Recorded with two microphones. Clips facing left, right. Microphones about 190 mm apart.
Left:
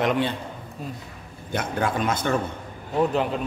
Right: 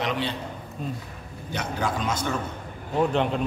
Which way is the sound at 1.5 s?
55° left (ahead or behind).